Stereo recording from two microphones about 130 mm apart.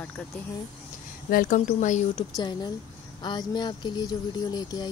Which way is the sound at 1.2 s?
90° left.